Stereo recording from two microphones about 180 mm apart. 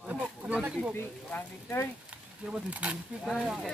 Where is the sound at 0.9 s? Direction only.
15° left (ahead or behind).